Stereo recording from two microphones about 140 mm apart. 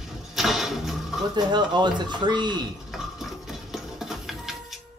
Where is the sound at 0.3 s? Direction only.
Centre (ahead or behind).